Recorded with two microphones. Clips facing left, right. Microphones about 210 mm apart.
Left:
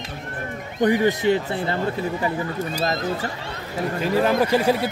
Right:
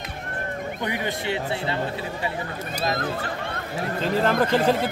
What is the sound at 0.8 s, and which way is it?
Speech, 45° left (ahead or behind).